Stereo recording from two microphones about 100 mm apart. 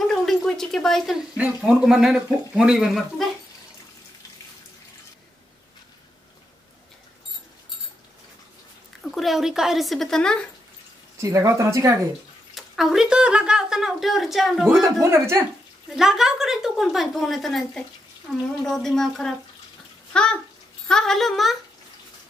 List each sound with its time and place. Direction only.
0.0 s a sound: 5° left (ahead or behind)
1.3 s speech: 15° right (ahead or behind)
9.0 s a woman's voice: centre (ahead or behind)
11.1 s speech: 30° right (ahead or behind)
12.5 s a woman's voice: 5° right (ahead or behind)
15.0 s speech: 25° right (ahead or behind)
16.0 s a woman's voice: 5° right (ahead or behind)